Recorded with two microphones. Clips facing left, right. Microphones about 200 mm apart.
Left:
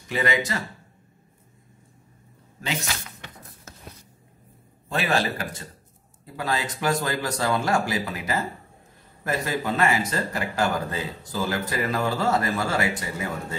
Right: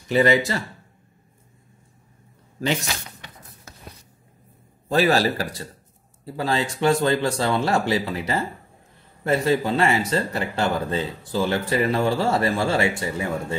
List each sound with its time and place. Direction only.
0.1 s speech: 30° right (ahead or behind)
4.9 s a man's voice: 35° right (ahead or behind)